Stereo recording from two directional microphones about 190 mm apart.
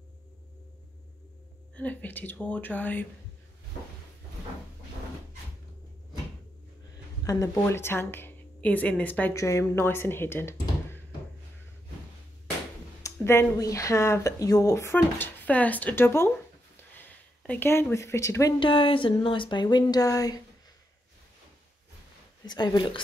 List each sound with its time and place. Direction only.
1.8 s speech: 10° left (ahead or behind)
7.2 s speech: 20° left (ahead or behind)
13.0 s speech: 15° left (ahead or behind)
17.5 s speech: 10° left (ahead or behind)
18.6 s speech: 25° left (ahead or behind)
22.5 s speech: 20° left (ahead or behind)